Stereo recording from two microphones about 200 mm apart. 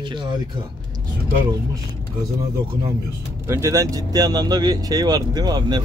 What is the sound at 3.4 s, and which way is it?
Speech, 15° right (ahead or behind).